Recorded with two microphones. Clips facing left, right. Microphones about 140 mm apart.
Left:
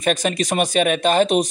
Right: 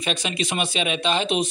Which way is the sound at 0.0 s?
45° left (ahead or behind).